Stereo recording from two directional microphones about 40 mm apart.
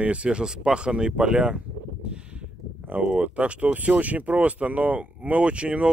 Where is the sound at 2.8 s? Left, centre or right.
Right.